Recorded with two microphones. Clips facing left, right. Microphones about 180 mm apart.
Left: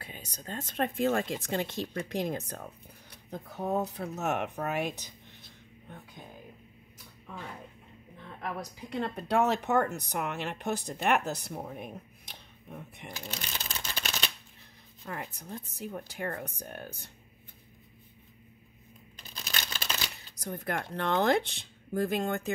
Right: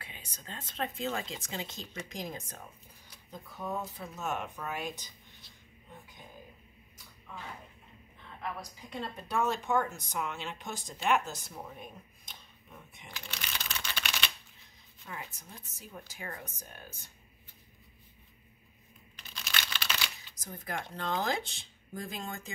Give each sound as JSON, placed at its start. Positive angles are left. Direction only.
{"t": 0.0, "sound": "speech", "side_deg": 40}
{"t": 8.9, "sound": "speech", "side_deg": 70}
{"t": 13.1, "sound": "shuffling cards", "side_deg": 40}
{"t": 15.0, "sound": "speech", "side_deg": 50}
{"t": 15.7, "sound": "speech", "side_deg": 60}
{"t": 19.3, "sound": "a sound", "side_deg": 40}
{"t": 20.3, "sound": "speech", "side_deg": 65}